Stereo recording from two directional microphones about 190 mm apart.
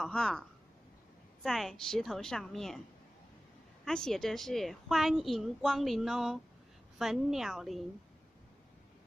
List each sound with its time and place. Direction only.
0.0 s a woman's voice: 5° left (ahead or behind)
3.8 s a woman's voice: centre (ahead or behind)